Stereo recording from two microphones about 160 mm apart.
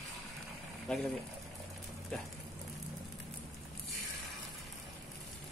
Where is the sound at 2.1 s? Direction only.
5° left (ahead or behind).